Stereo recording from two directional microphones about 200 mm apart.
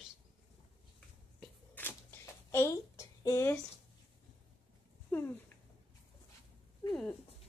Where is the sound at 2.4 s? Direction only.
15° left (ahead or behind).